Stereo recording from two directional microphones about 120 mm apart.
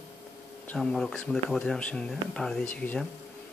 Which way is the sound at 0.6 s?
5° left (ahead or behind).